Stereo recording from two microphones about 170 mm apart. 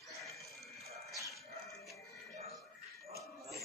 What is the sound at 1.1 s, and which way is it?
Dog, 20° left (ahead or behind).